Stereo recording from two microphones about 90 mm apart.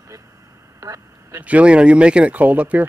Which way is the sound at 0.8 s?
35° right (ahead or behind).